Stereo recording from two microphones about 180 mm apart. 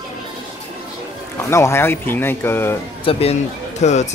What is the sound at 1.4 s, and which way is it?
Speech, 15° left (ahead or behind).